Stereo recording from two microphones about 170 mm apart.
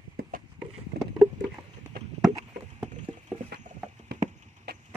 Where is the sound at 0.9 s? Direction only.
70° right (ahead or behind).